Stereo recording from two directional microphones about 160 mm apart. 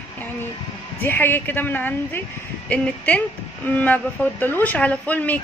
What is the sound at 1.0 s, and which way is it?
Speech, 15° left (ahead or behind).